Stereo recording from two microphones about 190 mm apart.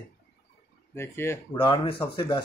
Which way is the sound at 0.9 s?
15° left (ahead or behind).